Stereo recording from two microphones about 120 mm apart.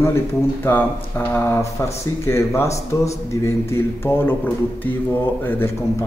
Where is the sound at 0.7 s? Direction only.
15° left (ahead or behind).